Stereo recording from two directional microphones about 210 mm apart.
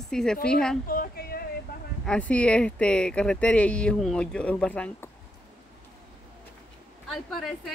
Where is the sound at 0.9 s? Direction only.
45° left (ahead or behind).